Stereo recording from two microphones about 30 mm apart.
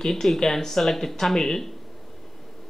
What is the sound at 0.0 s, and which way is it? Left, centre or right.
A woman's voice, centre.